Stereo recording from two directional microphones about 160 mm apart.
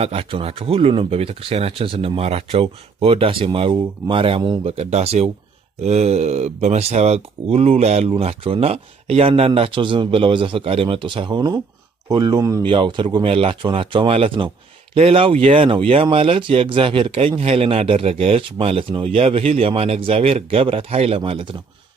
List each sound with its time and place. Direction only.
0.0 s speech: 35° right (ahead or behind)
4.6 s speech: 40° right (ahead or behind)